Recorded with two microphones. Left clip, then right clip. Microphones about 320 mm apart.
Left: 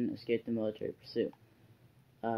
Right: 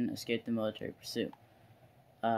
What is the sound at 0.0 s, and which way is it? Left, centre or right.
Speech, right.